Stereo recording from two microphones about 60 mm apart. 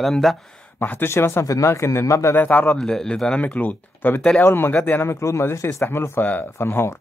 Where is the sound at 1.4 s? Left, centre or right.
Left.